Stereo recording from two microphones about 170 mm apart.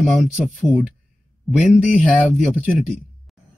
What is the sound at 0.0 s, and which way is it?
Speech, 5° left (ahead or behind).